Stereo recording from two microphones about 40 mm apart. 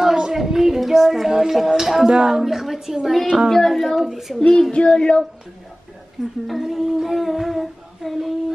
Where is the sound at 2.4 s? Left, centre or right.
Centre.